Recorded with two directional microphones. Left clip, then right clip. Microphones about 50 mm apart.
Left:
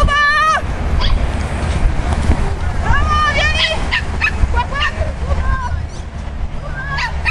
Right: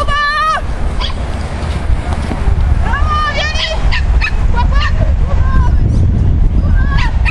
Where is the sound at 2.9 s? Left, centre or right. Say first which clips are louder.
Even; centre.